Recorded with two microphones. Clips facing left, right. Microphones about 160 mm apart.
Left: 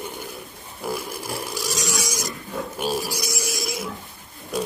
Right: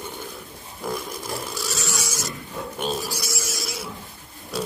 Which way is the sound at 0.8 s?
10° left (ahead or behind).